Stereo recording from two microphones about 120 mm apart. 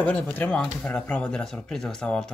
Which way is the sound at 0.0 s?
10° left (ahead or behind).